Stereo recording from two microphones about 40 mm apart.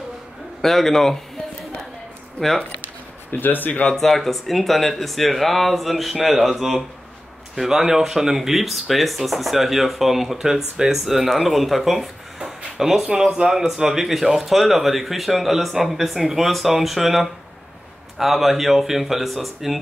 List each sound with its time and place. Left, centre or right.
0.6 s a man's voice: centre
2.8 s a sound: left
3.9 s speech: centre